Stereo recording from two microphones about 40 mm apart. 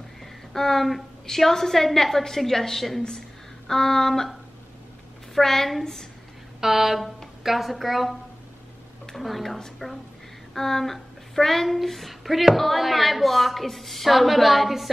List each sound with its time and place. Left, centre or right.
0.2 s a sound: centre
1.2 s a woman's voice: centre
5.3 s a woman's voice: centre
6.6 s a woman's voice: centre